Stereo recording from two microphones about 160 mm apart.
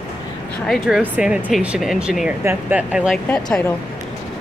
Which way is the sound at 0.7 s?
5° right (ahead or behind).